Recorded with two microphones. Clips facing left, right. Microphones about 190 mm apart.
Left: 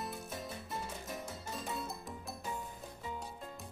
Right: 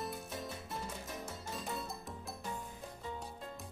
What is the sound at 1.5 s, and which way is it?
Music, centre (ahead or behind).